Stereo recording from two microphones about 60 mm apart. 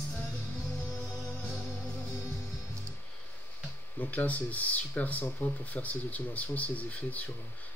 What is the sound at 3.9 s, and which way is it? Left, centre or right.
Speech, left.